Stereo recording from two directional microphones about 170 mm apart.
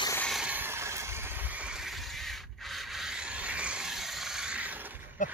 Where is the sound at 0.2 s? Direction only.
Centre (ahead or behind).